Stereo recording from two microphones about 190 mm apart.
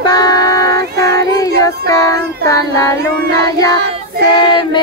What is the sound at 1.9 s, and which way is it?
Child singing, 15° left (ahead or behind).